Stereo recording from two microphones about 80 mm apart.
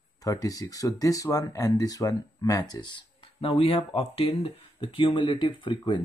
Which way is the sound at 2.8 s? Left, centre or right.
Left.